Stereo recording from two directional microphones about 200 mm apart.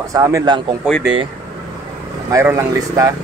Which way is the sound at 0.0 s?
15° right (ahead or behind).